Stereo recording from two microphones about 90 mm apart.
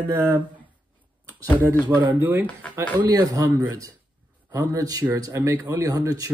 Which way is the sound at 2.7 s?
40° right (ahead or behind).